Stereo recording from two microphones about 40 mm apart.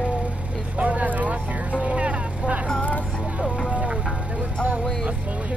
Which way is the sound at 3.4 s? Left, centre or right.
Left.